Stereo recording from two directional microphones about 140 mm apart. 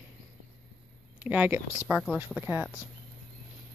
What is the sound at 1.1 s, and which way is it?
Speech, 10° right (ahead or behind).